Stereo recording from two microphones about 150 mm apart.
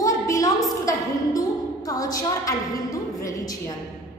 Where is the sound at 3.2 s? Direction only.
25° left (ahead or behind).